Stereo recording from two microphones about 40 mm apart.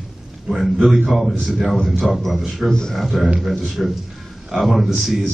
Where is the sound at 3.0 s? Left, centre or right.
Centre.